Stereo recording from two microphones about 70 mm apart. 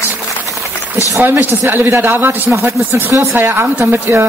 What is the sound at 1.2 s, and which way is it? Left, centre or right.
A man's voice, right.